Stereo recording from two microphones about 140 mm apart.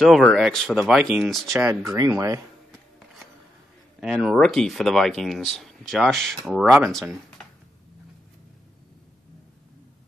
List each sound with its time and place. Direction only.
0.0 s speech: centre (ahead or behind)
1.9 s speech: 20° right (ahead or behind)
2.7 s a sound: centre (ahead or behind)
4.0 s speech: 5° right (ahead or behind)